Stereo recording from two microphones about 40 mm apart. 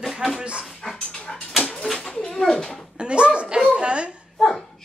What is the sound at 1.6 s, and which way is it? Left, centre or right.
Bird, left.